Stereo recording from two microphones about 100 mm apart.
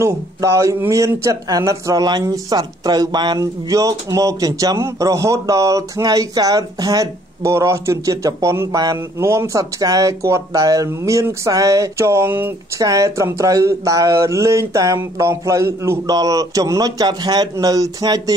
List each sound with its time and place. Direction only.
0.0 s speech: 30° right (ahead or behind)
12.7 s speech: 35° right (ahead or behind)